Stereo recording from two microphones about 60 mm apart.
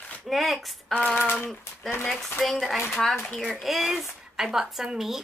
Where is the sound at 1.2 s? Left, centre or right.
Left.